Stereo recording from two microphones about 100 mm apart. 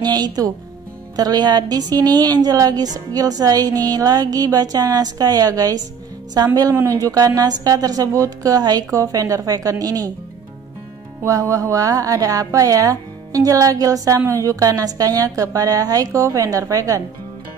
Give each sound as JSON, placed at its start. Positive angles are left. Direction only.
{"t": 0.0, "sound": "a woman's voice", "side_deg": -40}
{"t": 6.7, "sound": "a woman's voice", "side_deg": -30}
{"t": 11.2, "sound": "a woman's voice", "side_deg": -30}